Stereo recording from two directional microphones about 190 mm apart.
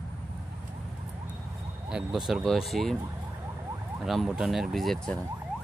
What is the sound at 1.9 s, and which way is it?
Speech, 5° right (ahead or behind).